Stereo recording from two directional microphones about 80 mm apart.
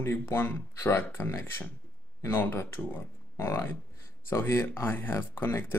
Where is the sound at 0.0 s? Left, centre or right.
Left.